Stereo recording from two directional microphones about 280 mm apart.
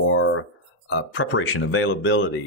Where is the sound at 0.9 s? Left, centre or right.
Left.